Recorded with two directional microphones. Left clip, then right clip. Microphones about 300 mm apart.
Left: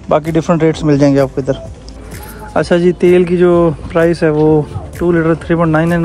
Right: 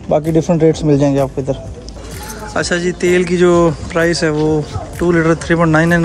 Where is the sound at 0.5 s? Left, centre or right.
Left.